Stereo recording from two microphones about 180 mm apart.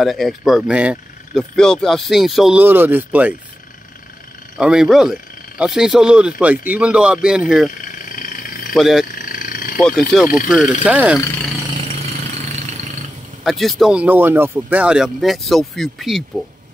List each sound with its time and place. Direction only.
0.0 s speech: centre (ahead or behind)
1.6 s speech: 5° left (ahead or behind)
4.6 s speech: 5° right (ahead or behind)
7.8 s a sound: 50° left (ahead or behind)
8.7 s speech: centre (ahead or behind)
9.1 s vehicle: 50° left (ahead or behind)
9.8 s speech: 5° left (ahead or behind)
13.4 s speech: centre (ahead or behind)